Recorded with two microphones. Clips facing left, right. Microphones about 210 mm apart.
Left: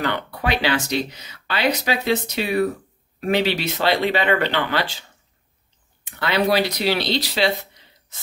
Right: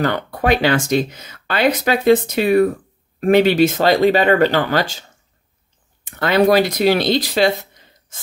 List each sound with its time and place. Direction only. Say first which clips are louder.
0.0 s speech: right 5 dB; 45° right (ahead or behind)
6.0 s speech: right 6 dB; 45° right (ahead or behind)